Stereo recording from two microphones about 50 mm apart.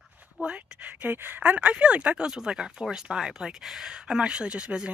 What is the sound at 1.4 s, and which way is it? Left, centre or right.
Speech, right.